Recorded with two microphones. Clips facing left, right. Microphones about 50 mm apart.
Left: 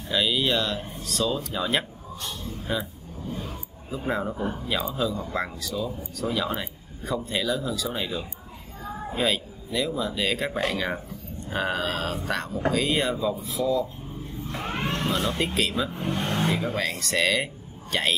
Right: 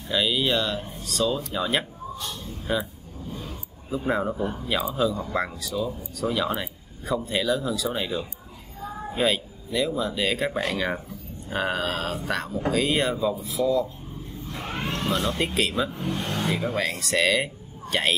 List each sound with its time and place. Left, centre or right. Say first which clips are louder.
0.1 s speech: even; centre
4.1 s speech: right 2 dB; centre
14.6 s vehicle: left 1 dB; left
15.0 s speech: right 2 dB; centre
16.0 s speech: left 1 dB; left
16.4 s speech: even; centre